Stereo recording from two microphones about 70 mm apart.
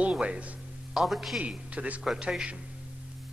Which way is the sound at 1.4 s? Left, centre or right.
Centre.